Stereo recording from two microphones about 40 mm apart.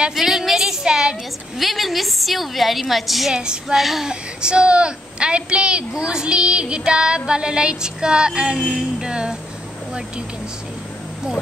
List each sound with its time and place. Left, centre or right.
0.1 s a sound: centre
0.8 s a sound: centre
1.6 s a woman's voice: centre
3.3 s a woman's voice: right
3.7 s speech: centre
4.1 s a woman's voice: right